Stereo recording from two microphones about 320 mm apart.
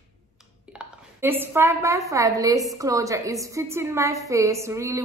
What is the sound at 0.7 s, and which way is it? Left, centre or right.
A woman's voice, centre.